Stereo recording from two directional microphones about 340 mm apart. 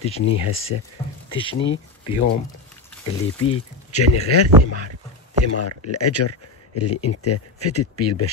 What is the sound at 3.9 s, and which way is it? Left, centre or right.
Speech, left.